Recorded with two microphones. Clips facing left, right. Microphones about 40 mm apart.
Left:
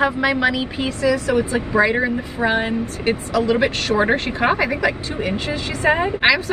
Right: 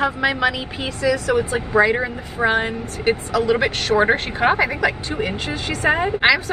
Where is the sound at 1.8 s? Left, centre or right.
Centre.